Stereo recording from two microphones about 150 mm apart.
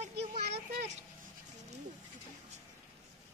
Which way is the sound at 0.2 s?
45° right (ahead or behind).